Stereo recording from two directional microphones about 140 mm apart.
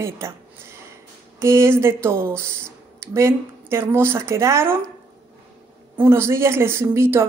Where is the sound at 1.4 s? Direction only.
20° right (ahead or behind).